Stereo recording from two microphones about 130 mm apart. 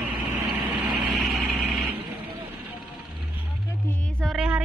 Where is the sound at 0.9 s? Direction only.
Centre (ahead or behind).